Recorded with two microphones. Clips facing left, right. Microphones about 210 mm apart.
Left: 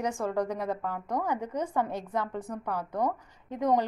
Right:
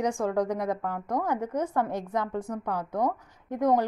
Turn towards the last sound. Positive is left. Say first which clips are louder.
# right 2 dB
turn(degrees=-10)  # may be behind; listen again after turning